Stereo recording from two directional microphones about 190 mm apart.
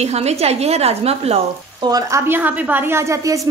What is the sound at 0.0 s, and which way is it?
A woman's voice, 35° right (ahead or behind).